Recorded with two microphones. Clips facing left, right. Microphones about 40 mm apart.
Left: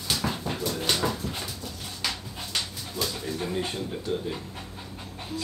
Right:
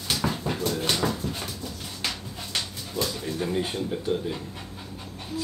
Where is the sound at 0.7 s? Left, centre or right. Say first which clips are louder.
Left 1 dB; centre.